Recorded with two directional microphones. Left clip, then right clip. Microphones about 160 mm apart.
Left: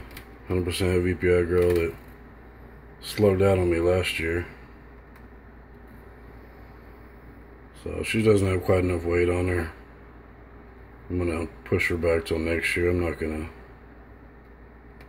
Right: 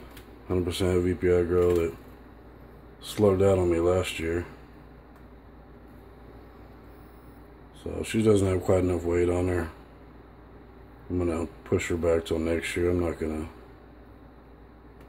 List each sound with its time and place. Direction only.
0.5 s speech: 5° right (ahead or behind)
3.1 s speech: centre (ahead or behind)
7.8 s speech: centre (ahead or behind)
11.1 s speech: 5° right (ahead or behind)